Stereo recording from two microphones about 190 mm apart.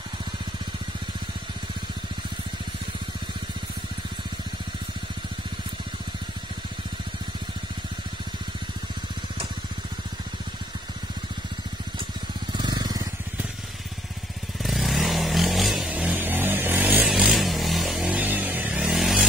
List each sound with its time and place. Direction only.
12.5 s vehicle: 25° right (ahead or behind)
14.6 s vehicle: centre (ahead or behind)